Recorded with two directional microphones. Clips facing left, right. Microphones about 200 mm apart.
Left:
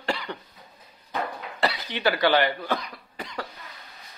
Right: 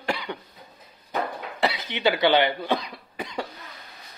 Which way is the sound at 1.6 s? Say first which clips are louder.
Right 2 dB; 20° right (ahead or behind).